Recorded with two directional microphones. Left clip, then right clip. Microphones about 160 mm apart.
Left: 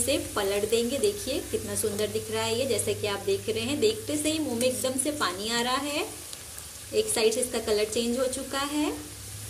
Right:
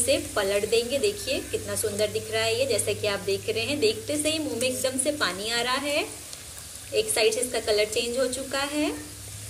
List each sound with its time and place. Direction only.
0.0 s a woman's voice: 90° left